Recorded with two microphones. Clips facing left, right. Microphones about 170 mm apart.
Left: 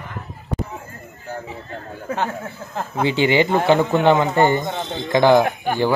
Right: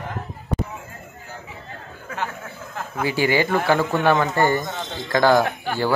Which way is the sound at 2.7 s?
25° left (ahead or behind).